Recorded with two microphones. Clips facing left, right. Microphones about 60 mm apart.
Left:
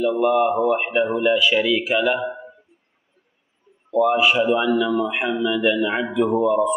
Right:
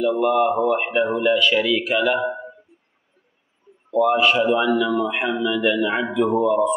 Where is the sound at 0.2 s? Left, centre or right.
Centre.